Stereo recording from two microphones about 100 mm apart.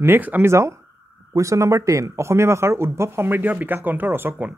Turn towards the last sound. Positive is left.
turn(degrees=-20)  # may be behind; listen again after turning